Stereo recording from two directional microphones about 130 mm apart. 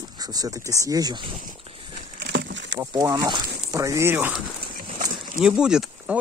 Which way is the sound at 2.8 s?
25° right (ahead or behind).